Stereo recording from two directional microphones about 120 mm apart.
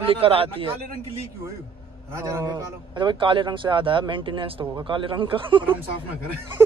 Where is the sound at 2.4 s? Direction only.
40° right (ahead or behind).